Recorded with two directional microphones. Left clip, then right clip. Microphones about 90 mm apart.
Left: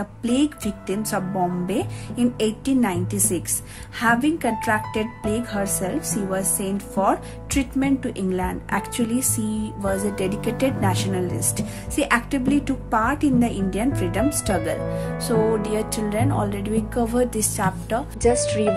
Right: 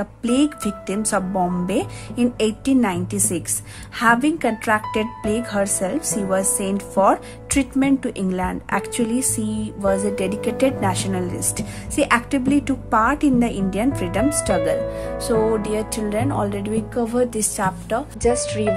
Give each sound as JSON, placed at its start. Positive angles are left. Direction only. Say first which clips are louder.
{"t": 0.0, "sound": "speech", "louder": "right 3 dB", "side_deg": -35}
{"t": 17.3, "sound": "speech", "louder": "right 2 dB", "side_deg": -35}
{"t": 18.2, "sound": "speech", "louder": "left 2 dB", "side_deg": 0}